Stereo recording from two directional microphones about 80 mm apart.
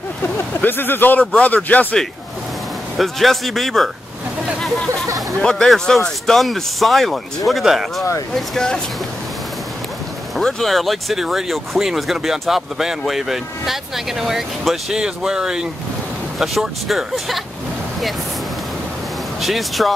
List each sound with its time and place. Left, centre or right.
0.6 s speech: left
3.0 s speech: centre
5.4 s speech: centre
8.4 s speech: centre
10.3 s speech: centre
19.4 s speech: centre